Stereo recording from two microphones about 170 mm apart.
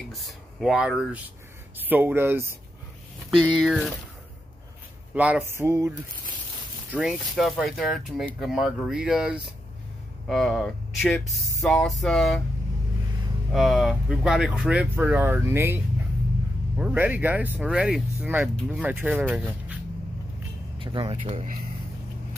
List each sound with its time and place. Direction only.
0.1 s speech: centre (ahead or behind)
3.3 s speech: 5° left (ahead or behind)
5.1 s speech: 10° right (ahead or behind)
6.9 s speech: 5° right (ahead or behind)
13.5 s speech: centre (ahead or behind)
20.8 s speech: 30° right (ahead or behind)